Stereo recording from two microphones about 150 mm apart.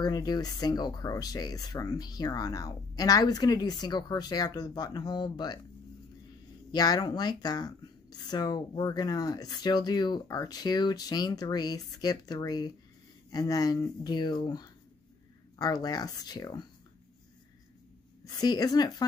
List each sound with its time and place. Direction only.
0.0 s speech: 25° left (ahead or behind)
6.7 s speech: 25° left (ahead or behind)
18.2 s speech: 25° left (ahead or behind)